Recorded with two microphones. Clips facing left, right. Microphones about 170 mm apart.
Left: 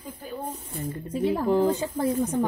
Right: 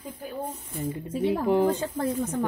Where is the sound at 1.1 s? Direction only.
Centre (ahead or behind).